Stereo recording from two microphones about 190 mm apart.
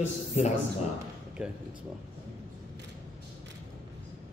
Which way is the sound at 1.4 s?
5° right (ahead or behind).